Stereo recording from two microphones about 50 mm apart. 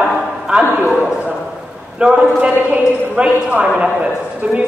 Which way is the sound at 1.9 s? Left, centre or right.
Right.